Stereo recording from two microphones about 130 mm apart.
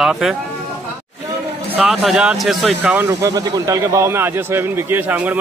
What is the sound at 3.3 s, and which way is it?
A man's voice, 25° right (ahead or behind).